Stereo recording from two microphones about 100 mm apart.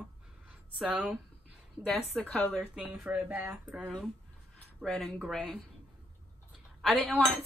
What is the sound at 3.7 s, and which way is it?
A woman's voice, 5° right (ahead or behind).